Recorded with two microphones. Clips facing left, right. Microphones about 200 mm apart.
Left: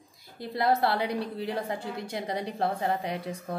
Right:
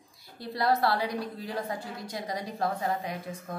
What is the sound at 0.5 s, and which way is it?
Speech, 20° left (ahead or behind).